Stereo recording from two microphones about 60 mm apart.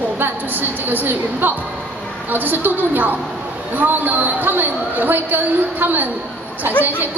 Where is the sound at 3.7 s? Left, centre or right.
Right.